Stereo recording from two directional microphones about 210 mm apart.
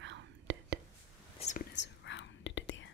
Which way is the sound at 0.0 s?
60° right (ahead or behind).